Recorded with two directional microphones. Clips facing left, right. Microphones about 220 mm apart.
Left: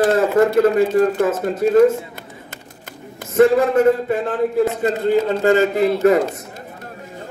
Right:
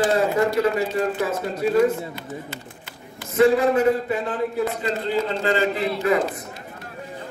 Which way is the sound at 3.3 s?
45° left (ahead or behind).